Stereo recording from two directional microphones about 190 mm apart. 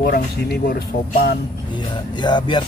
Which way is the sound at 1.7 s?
25° left (ahead or behind).